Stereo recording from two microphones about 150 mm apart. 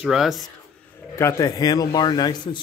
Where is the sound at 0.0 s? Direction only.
5° right (ahead or behind).